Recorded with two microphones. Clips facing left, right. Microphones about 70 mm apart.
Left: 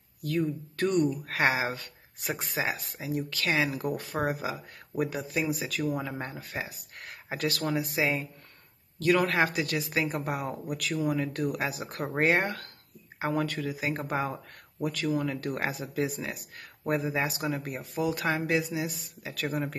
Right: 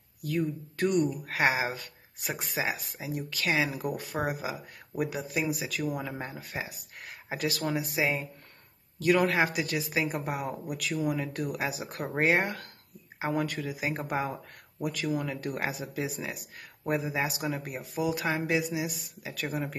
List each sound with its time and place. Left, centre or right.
0.7 s speech: centre
9.0 s speech: right
9.3 s speech: centre